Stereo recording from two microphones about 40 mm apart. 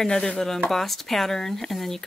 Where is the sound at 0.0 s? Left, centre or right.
Centre.